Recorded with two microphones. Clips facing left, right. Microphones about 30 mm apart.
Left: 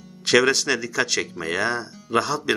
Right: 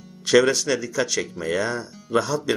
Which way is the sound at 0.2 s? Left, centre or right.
Left.